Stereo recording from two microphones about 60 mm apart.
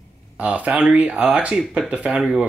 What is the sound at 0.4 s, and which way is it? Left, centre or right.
Speech, right.